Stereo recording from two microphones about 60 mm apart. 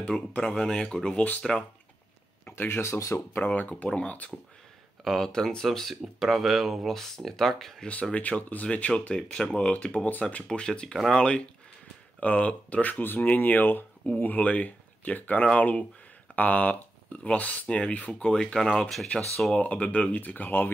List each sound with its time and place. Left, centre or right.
0.3 s speech: centre
1.4 s speech: centre
2.5 s speech: left
3.0 s speech: left
3.3 s speech: left
5.0 s speech: centre
7.8 s speech: left
19.1 s speech: left